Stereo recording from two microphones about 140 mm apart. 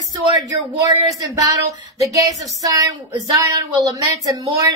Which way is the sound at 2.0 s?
25° right (ahead or behind).